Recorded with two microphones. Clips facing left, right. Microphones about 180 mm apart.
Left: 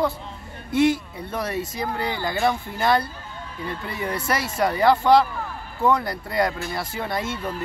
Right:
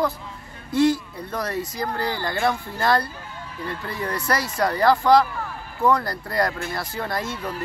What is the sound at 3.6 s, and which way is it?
Speech, 20° left (ahead or behind).